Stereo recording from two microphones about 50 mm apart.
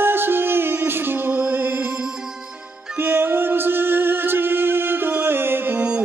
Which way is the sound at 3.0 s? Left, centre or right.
Right.